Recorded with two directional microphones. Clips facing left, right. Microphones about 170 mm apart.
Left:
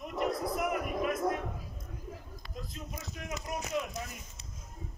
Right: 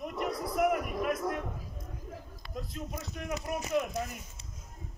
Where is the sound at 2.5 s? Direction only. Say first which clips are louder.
Right 4 dB; 55° right (ahead or behind).